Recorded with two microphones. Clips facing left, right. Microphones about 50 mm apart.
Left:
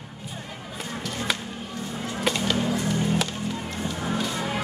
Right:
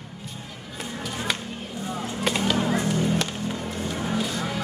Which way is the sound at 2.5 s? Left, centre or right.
Right.